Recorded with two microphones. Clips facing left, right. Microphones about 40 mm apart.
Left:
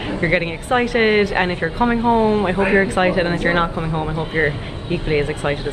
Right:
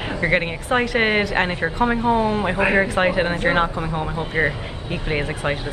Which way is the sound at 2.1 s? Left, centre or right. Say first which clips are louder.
Left 4 dB; left.